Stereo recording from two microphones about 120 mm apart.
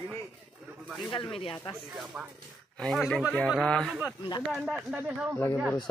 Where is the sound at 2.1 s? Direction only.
15° right (ahead or behind).